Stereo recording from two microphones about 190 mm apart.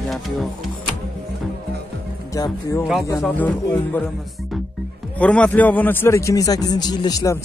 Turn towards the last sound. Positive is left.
turn(degrees=20)  # may be behind; listen again after turning